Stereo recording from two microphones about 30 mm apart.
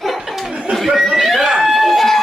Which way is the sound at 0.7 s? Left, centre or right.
Centre.